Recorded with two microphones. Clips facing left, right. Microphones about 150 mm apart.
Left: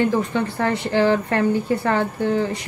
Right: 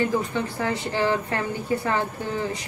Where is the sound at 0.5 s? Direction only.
65° left (ahead or behind).